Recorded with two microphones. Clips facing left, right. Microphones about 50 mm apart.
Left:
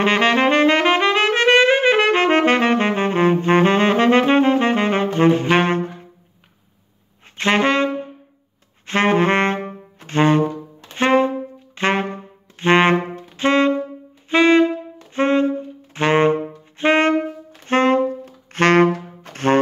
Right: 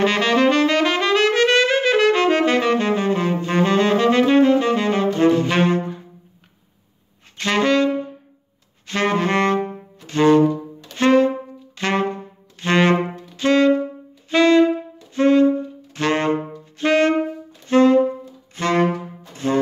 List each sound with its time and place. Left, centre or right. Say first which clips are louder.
0.0 s saxophone: left 1 dB; left
7.3 s saxophone: left 1 dB; left
18.2 s saxophone: left 7 dB; left